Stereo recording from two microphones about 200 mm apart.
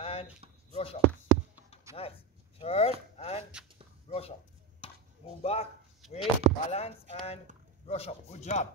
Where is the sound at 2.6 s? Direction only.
30° left (ahead or behind).